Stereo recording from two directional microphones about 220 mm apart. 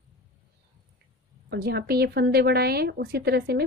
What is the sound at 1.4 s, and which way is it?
A woman's voice, 45° right (ahead or behind).